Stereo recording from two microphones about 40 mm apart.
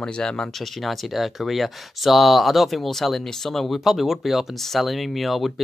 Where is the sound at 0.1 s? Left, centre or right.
Centre.